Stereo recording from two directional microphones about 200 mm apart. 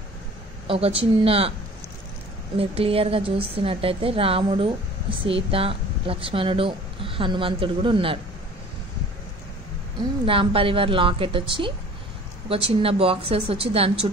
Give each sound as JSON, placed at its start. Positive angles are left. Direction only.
{"t": 0.7, "sound": "a woman's voice", "side_deg": -30}
{"t": 2.5, "sound": "a woman's voice", "side_deg": -30}
{"t": 10.2, "sound": "a woman's voice", "side_deg": -25}